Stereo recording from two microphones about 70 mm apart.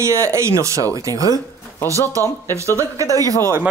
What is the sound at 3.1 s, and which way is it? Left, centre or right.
Speech, right.